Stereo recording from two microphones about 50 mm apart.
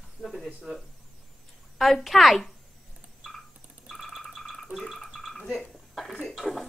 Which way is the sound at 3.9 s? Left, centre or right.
Centre.